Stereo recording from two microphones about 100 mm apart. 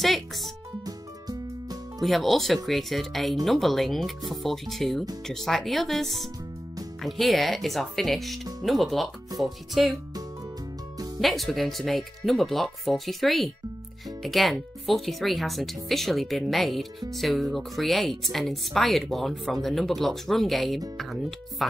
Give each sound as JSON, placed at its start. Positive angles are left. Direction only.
{"t": 0.0, "sound": "music", "side_deg": 0}
{"t": 0.8, "sound": "music", "side_deg": -40}
{"t": 2.0, "sound": "speech", "side_deg": 0}
{"t": 11.1, "sound": "speech", "side_deg": 0}